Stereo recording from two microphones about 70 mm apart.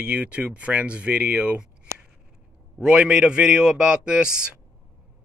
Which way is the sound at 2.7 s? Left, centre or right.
Centre.